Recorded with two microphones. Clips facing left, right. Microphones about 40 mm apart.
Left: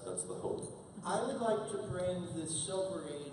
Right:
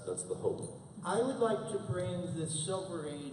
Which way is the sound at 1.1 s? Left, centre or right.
Centre.